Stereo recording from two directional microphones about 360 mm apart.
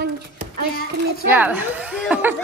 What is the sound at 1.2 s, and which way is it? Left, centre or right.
Speech, centre.